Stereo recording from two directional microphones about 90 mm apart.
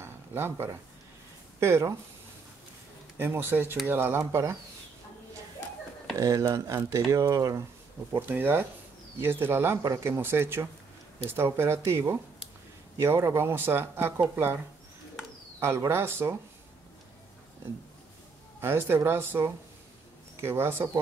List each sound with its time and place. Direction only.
0.0 s a sound: 25° right (ahead or behind)
1.6 s speech: 30° right (ahead or behind)
3.2 s speech: 25° right (ahead or behind)
6.1 s speech: 35° right (ahead or behind)
8.1 s speech: 20° right (ahead or behind)
15.8 s speech: 30° right (ahead or behind)
18.6 s speech: 25° right (ahead or behind)